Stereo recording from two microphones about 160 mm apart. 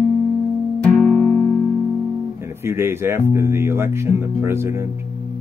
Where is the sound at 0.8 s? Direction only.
5° left (ahead or behind).